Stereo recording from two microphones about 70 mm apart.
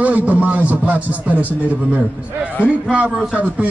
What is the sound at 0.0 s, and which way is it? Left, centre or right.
Speech, right.